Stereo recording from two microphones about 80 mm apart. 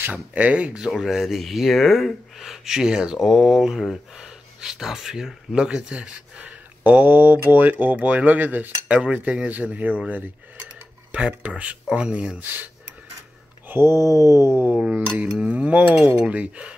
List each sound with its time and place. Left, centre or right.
0.0 s cutlery: centre
0.9 s speech: centre; by 7.7 s right
7.8 s cutlery: centre
13.7 s a sound: right
14.8 s cutlery: centre